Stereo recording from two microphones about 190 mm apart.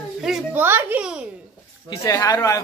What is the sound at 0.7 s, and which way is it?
Speech, 10° right (ahead or behind).